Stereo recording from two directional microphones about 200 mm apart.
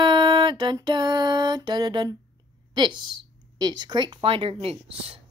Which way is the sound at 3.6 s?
20° right (ahead or behind).